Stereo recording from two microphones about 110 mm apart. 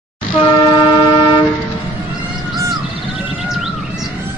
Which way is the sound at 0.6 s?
45° left (ahead or behind).